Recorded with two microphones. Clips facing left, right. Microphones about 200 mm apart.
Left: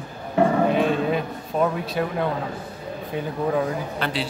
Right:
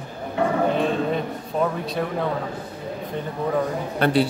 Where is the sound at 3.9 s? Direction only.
50° right (ahead or behind).